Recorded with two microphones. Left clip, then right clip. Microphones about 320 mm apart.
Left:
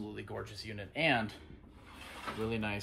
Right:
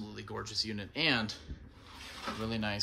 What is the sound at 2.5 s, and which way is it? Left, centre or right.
Speech, centre.